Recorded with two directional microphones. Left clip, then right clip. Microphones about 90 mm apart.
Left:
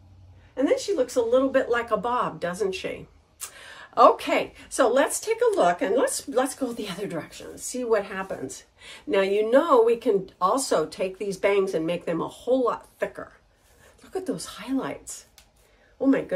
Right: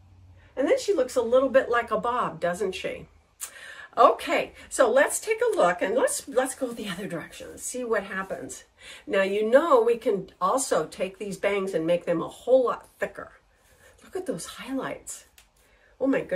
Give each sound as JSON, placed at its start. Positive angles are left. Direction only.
{"t": 0.6, "sound": "speech", "side_deg": 0}
{"t": 2.0, "sound": "a woman's voice", "side_deg": 20}
{"t": 3.4, "sound": "a woman's voice", "side_deg": 40}
{"t": 6.8, "sound": "a woman's voice", "side_deg": 50}